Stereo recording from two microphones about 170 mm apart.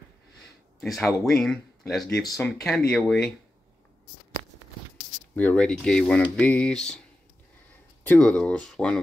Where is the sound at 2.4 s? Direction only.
5° left (ahead or behind).